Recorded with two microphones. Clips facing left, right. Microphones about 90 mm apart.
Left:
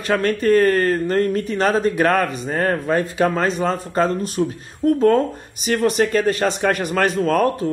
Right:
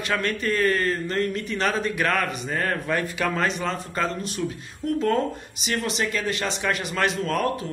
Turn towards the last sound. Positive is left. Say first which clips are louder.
# left 7 dB
turn(degrees=40)  # may be behind; listen again after turning